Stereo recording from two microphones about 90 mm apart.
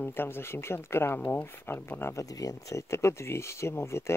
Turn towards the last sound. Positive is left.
turn(degrees=30)  # may be behind; listen again after turning